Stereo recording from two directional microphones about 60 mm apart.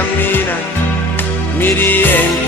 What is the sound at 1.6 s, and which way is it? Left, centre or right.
Music, left.